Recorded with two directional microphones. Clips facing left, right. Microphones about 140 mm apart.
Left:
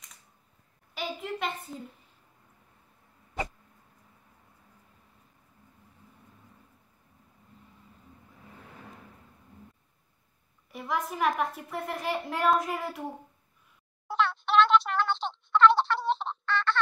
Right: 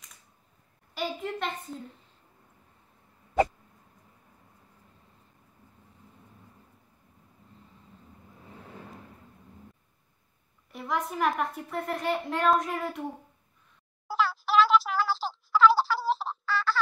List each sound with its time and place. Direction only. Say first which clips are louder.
0.9 s a woman's voice: right 2 dB; centre (ahead or behind)
10.7 s a woman's voice: right 1 dB; centre (ahead or behind)
14.0 s a sound: even; centre (ahead or behind)